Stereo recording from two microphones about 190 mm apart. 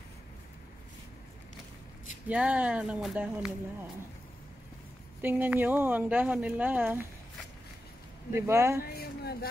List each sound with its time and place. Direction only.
2.2 s speech: 5° right (ahead or behind)
5.2 s speech: 10° right (ahead or behind)
8.3 s speech: 15° right (ahead or behind)
8.8 s a sound: 55° left (ahead or behind)